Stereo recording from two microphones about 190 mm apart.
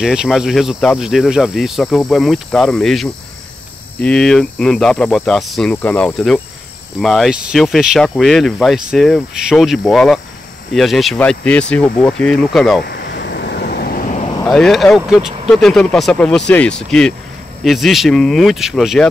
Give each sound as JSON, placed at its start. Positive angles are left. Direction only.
{"t": 0.0, "sound": "speech", "side_deg": -5}
{"t": 12.8, "sound": "waves", "side_deg": 60}
{"t": 14.4, "sound": "speech", "side_deg": 5}